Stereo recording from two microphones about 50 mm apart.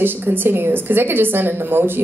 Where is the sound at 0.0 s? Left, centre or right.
Right.